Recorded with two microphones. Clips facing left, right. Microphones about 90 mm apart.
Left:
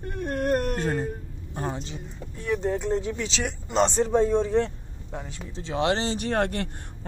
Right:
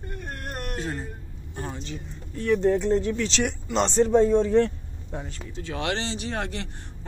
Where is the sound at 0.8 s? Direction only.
50° left (ahead or behind).